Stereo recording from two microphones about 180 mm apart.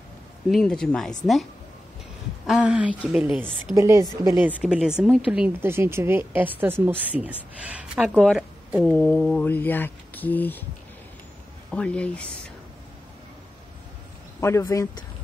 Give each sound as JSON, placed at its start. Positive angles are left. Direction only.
{"t": 0.5, "sound": "speech", "side_deg": 5}
{"t": 3.7, "sound": "speech", "side_deg": -15}
{"t": 8.9, "sound": "speech", "side_deg": 10}
{"t": 11.7, "sound": "speech", "side_deg": 5}
{"t": 14.4, "sound": "speech", "side_deg": 15}